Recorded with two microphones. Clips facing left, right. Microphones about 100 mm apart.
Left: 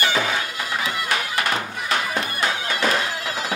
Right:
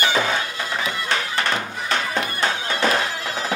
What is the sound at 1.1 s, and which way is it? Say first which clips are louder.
Music: right 1 dB; 35° right (ahead or behind).